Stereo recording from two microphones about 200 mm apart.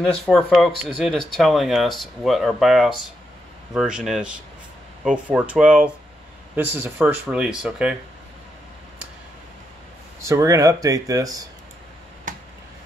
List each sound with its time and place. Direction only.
0.2 s speech: centre (ahead or behind)
10.2 s speech: 15° right (ahead or behind)